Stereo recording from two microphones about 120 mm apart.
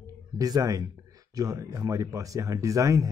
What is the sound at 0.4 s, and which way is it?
Speech, 30° right (ahead or behind).